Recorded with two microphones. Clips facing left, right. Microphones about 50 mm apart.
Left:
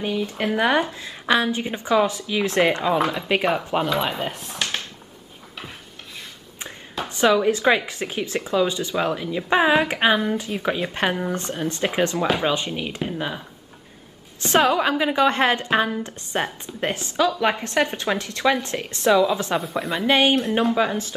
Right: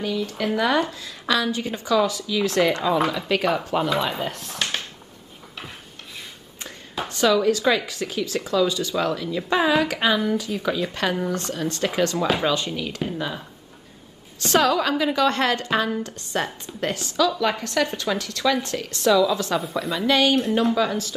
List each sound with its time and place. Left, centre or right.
0.0 s a woman's voice: left
4.6 s a sound: centre
7.1 s a woman's voice: left
14.4 s a woman's voice: left
19.6 s speech: centre
20.1 s a woman's voice: left